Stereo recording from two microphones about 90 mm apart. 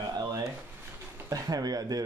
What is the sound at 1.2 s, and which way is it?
Speech, 45° right (ahead or behind).